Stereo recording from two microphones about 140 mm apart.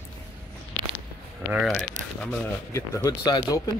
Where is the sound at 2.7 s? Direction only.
25° left (ahead or behind).